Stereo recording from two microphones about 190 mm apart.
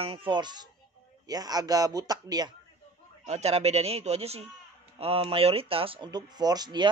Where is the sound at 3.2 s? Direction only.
35° right (ahead or behind).